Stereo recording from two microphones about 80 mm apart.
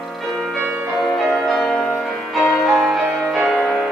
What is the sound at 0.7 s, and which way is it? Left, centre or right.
Music, centre.